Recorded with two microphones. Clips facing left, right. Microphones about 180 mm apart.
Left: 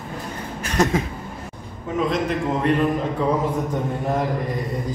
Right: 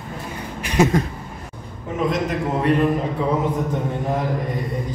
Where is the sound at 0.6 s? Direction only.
10° right (ahead or behind).